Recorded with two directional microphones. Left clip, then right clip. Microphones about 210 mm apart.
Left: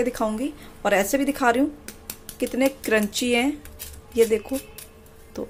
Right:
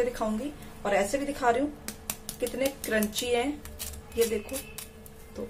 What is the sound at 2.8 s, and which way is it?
Speech, 45° left (ahead or behind).